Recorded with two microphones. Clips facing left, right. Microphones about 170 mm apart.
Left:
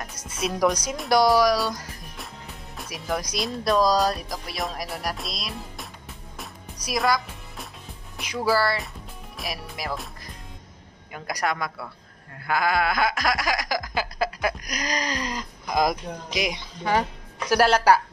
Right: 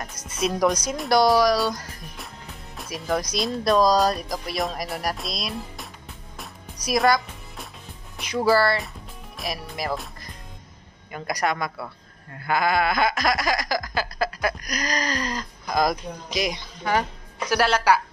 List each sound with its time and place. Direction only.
0.4 s speech: centre (ahead or behind)
1.1 s a sound: 10° left (ahead or behind)
2.9 s a sound: 10° left (ahead or behind)
3.4 s speech: centre (ahead or behind)
6.3 s music: centre (ahead or behind)
8.5 s speech: 5° left (ahead or behind)
11.1 s speech: 5° left (ahead or behind)
12.4 s a sound: 5° left (ahead or behind); by 17.0 s 20° left (ahead or behind)
17.5 s a woman's voice: 40° left (ahead or behind)